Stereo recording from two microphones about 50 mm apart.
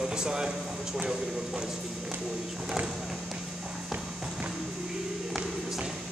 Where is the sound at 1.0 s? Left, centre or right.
Centre.